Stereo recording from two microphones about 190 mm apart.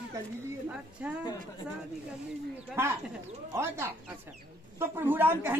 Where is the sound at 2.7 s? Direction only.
15° right (ahead or behind).